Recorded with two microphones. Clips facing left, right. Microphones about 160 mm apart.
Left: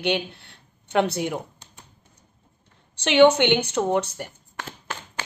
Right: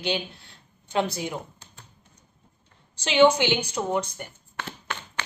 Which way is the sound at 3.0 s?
65° left (ahead or behind).